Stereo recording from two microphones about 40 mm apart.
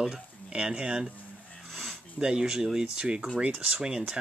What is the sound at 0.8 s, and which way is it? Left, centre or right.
Speech, right.